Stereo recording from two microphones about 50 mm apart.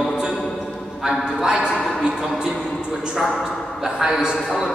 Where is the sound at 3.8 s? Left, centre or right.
Centre.